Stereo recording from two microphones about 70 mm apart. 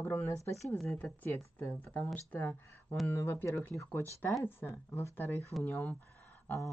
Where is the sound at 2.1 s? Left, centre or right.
Left.